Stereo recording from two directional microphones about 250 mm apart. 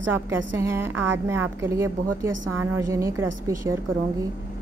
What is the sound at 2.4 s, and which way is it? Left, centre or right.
Speech, right.